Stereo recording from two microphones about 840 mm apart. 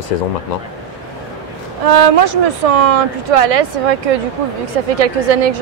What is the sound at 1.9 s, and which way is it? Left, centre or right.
A woman's voice, right.